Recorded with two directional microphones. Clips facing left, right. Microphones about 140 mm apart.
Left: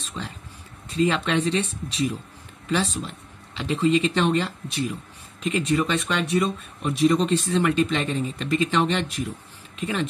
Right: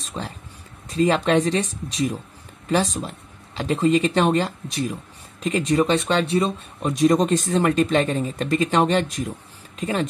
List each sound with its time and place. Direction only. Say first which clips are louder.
0.2 s speech: right 3 dB; 35° right (ahead or behind)
2.7 s speech: right 3 dB; 40° right (ahead or behind)